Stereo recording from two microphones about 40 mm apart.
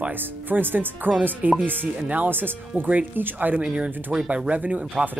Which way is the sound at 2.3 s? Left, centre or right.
Right.